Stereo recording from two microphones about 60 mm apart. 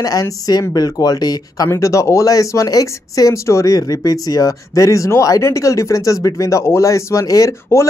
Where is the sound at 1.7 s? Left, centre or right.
Left.